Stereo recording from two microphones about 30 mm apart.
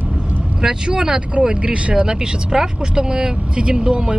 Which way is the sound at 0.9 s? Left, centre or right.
Right.